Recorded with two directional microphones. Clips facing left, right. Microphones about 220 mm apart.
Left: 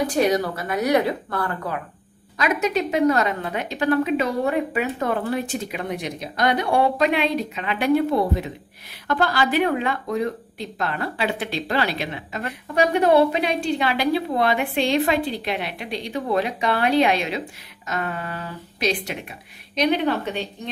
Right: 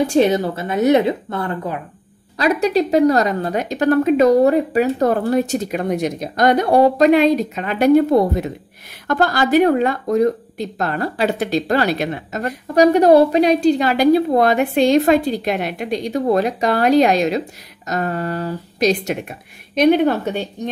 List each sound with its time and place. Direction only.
0.0 s speech: 25° right (ahead or behind)
2.3 s a woman's voice: 35° right (ahead or behind)